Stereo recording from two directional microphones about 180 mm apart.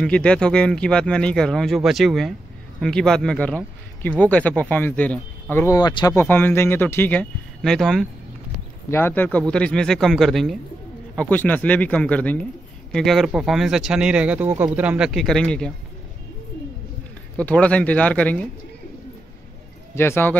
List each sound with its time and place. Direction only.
0.0 s speech: 5° left (ahead or behind)
17.4 s speech: 5° left (ahead or behind)
20.0 s speech: 10° left (ahead or behind)